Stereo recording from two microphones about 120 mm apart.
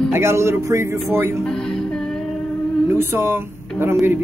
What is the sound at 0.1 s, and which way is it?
Speech, 20° right (ahead or behind).